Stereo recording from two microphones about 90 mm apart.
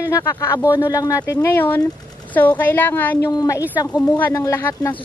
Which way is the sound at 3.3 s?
40° left (ahead or behind).